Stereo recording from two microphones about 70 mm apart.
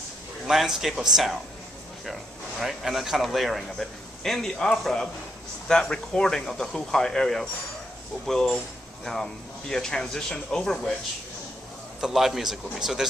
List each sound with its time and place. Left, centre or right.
0.5 s speech: centre
2.6 s speech: centre
12.0 s speech: centre